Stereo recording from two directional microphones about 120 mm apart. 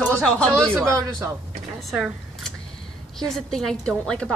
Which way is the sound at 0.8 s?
25° right (ahead or behind).